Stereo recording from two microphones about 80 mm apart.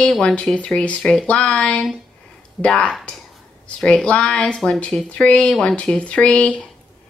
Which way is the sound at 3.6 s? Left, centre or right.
Centre.